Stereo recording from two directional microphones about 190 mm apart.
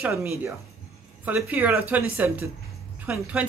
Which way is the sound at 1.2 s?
10° right (ahead or behind).